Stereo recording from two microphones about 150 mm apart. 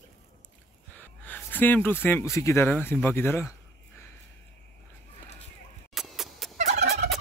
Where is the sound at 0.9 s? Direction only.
10° left (ahead or behind).